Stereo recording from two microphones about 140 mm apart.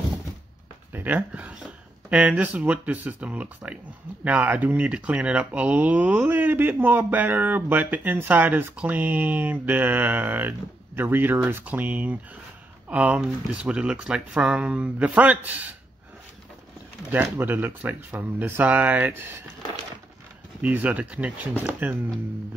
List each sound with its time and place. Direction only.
0.9 s speech: 10° right (ahead or behind)
17.1 s speech: 15° right (ahead or behind)
20.6 s speech: 10° right (ahead or behind)